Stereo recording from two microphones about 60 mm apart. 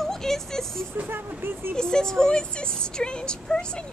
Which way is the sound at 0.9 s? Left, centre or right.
Right.